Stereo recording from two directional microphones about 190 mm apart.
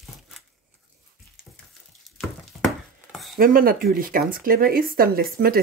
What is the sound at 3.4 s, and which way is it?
Speech, 50° right (ahead or behind).